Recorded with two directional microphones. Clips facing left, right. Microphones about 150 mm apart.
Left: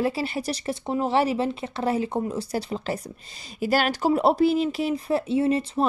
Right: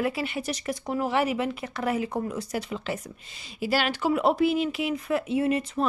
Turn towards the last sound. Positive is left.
turn(degrees=30)  # may be behind; listen again after turning